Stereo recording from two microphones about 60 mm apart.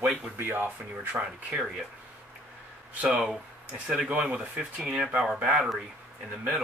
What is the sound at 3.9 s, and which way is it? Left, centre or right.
Speech, centre.